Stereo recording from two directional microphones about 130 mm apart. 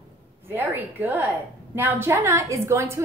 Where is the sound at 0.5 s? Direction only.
15° right (ahead or behind).